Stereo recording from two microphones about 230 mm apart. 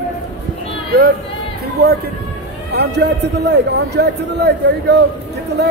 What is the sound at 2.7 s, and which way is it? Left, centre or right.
A man's voice, right.